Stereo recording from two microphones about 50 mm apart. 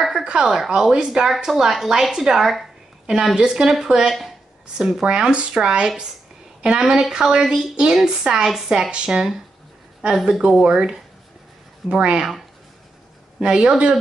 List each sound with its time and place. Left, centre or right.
0.2 s a woman's voice: centre
5.0 s a woman's voice: right
13.4 s a woman's voice: centre